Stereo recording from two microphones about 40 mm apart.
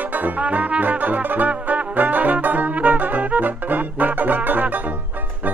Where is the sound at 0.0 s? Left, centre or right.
Right.